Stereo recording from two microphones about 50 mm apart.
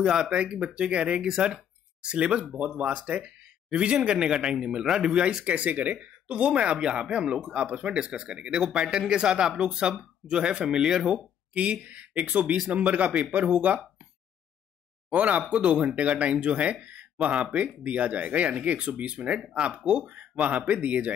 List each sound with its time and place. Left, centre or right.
0.4 s speech: right
1.2 s speech: centre
5.4 s speech: right
8.6 s speech: centre
11.5 s speech: right
15.0 s speech: right
16.8 s a sound: right
17.8 s speech: right